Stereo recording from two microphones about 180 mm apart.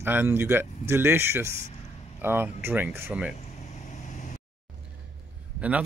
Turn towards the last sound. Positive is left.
turn(degrees=-5)  # may be behind; listen again after turning